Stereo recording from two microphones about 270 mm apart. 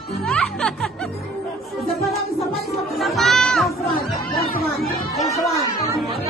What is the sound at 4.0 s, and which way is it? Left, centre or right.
Chatter, left.